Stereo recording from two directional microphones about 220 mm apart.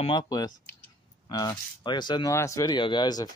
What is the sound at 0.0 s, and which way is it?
Speech, 20° left (ahead or behind).